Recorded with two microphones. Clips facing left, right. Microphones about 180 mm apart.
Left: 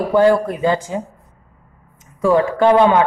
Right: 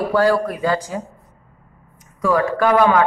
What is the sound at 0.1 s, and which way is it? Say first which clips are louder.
Speech: left 5 dB; 20° left (ahead or behind).